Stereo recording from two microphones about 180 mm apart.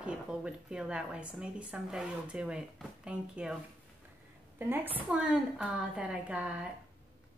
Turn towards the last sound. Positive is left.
turn(degrees=-5)  # may be behind; listen again after turning